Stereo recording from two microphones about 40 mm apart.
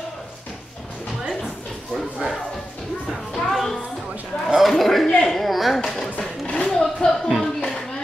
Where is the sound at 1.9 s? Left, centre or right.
Centre.